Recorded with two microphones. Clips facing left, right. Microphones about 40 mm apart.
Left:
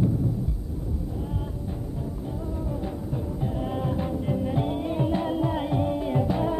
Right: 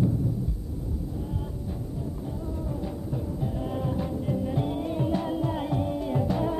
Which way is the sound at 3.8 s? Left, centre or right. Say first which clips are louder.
Left 1 dB; left.